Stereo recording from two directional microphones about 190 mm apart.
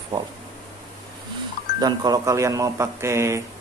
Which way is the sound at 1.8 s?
20° right (ahead or behind).